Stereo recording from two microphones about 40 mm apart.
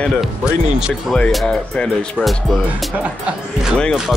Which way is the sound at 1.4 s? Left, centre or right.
Left.